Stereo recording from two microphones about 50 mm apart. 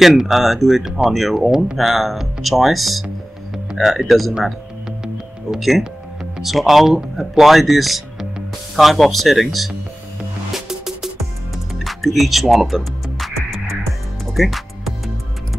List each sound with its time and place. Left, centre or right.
0.3 s speech: centre
1.5 s speech: centre
1.8 s speech: centre
5.6 s speech: centre
10.5 s music: centre